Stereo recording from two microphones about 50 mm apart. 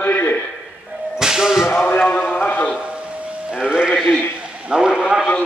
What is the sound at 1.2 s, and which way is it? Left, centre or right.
Speech, centre.